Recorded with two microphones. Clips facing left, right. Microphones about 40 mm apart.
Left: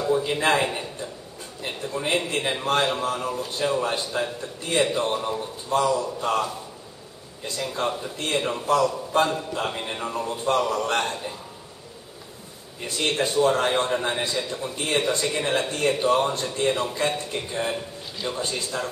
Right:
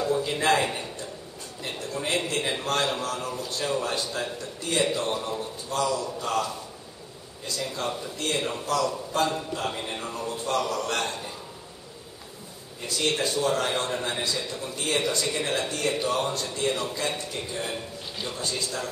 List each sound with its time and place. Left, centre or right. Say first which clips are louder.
0.0 s a man's voice: left 3 dB; centre
12.8 s a man's voice: left 2 dB; left